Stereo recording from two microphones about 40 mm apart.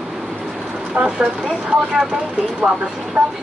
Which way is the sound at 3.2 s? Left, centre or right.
Right.